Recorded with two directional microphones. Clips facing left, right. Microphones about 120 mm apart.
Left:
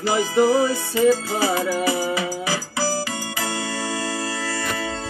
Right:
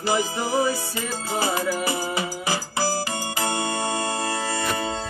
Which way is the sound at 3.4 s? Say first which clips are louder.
Right 2 dB; 20° right (ahead or behind).